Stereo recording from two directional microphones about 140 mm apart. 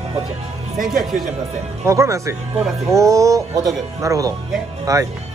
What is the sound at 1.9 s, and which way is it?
Speech, 20° right (ahead or behind).